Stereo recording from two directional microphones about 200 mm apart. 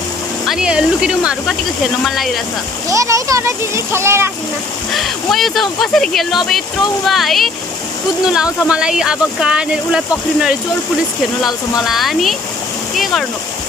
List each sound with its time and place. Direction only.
0.5 s speech: 5° right (ahead or behind)
2.9 s a child's voice: 15° right (ahead or behind)
4.9 s speech: centre (ahead or behind)